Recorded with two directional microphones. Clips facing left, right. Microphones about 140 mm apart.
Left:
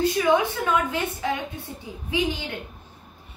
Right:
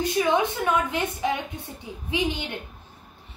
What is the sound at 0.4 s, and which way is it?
Speech, 20° right (ahead or behind).